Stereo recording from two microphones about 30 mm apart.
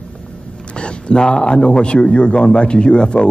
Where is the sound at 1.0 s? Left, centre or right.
Left.